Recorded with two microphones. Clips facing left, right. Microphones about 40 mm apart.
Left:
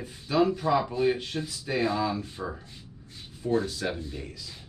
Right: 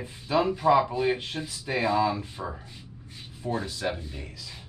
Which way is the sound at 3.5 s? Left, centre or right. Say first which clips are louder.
Left 2 dB; right.